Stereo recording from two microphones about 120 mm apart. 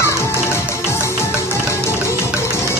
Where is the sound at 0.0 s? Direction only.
20° left (ahead or behind).